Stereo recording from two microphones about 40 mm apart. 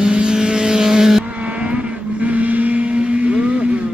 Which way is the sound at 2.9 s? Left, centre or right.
Right.